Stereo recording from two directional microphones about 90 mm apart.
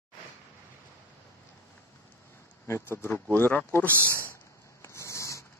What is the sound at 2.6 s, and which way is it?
Speech, 30° left (ahead or behind).